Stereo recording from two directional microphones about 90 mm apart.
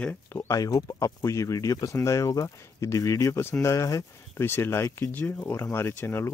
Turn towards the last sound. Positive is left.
turn(degrees=30)  # may be behind; listen again after turning